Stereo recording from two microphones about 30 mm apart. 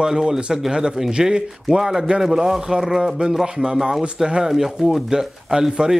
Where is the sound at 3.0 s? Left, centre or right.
Right.